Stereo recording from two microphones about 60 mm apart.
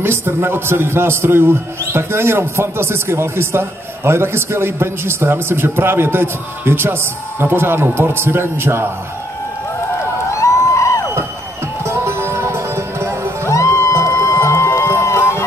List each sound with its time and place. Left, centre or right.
0.0 s a man's voice: right
10.3 s a sound: left
11.8 s music: right
13.5 s music: left
15.0 s run: left